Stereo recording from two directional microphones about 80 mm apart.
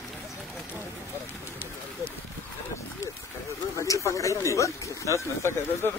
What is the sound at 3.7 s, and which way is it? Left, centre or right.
Speech, left.